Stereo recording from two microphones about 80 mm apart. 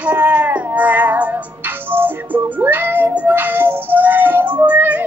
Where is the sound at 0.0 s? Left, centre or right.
Centre.